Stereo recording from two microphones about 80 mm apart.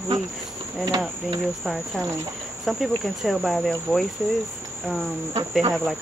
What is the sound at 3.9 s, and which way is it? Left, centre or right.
Cricket, centre.